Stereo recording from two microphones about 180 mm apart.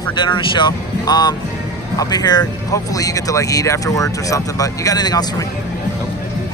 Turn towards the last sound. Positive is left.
turn(degrees=20)  # may be behind; listen again after turning